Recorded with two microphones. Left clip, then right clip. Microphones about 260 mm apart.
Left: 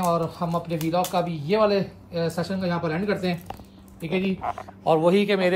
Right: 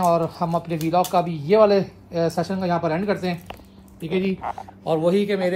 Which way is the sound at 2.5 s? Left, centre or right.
Centre.